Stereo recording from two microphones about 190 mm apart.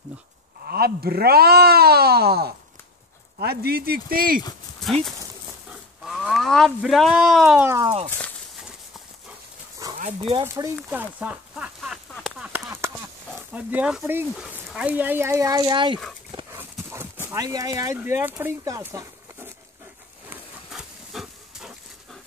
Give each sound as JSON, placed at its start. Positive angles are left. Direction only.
{"t": 0.7, "sound": "speech", "side_deg": -55}
{"t": 4.7, "sound": "speech", "side_deg": 0}
{"t": 9.8, "sound": "dog", "side_deg": -20}
{"t": 10.4, "sound": "speech", "side_deg": -15}
{"t": 10.9, "sound": "a sound", "side_deg": -10}
{"t": 13.5, "sound": "speech", "side_deg": -5}
{"t": 16.5, "sound": "horse", "side_deg": -10}
{"t": 17.3, "sound": "speech", "side_deg": -20}
{"t": 20.2, "sound": "pig", "side_deg": -5}